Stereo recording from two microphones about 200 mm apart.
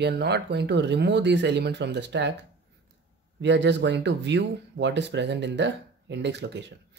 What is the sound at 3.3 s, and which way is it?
Speech, 60° right (ahead or behind).